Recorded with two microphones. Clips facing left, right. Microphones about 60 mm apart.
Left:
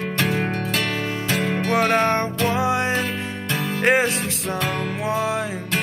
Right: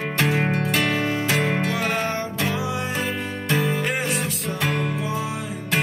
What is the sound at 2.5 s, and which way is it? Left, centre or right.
Music, left.